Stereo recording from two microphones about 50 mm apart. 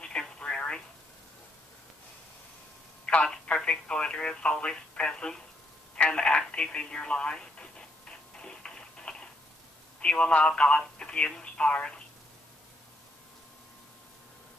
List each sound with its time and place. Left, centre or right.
0.0 s telephone: centre
3.1 s telephone: left
3.4 s speech: centre
5.9 s telephone: left
9.9 s speech: centre